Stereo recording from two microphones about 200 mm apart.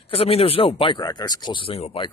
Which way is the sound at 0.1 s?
30° left (ahead or behind).